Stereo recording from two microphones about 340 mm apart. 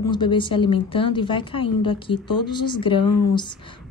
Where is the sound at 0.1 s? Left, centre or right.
Centre.